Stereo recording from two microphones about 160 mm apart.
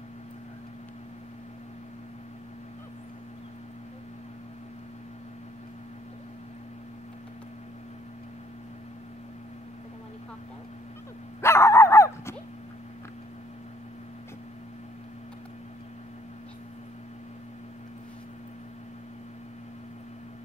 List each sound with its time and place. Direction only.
11.4 s dog: 15° left (ahead or behind)